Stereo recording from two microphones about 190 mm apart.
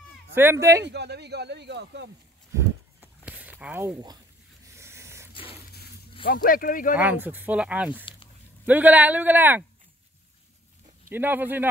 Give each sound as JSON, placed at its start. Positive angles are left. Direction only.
{"t": 0.3, "sound": "speech", "side_deg": -10}
{"t": 0.8, "sound": "speech", "side_deg": -60}
{"t": 2.5, "sound": "a sound", "side_deg": -10}
{"t": 5.3, "sound": "a sound", "side_deg": 30}
{"t": 6.2, "sound": "speech", "side_deg": 50}
{"t": 7.0, "sound": "speech", "side_deg": -10}
{"t": 11.1, "sound": "speech", "side_deg": -10}